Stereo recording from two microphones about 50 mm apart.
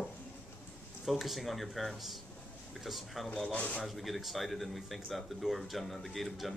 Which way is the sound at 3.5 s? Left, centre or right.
Left.